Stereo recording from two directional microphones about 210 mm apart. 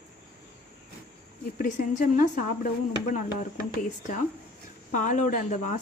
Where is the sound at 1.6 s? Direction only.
40° left (ahead or behind).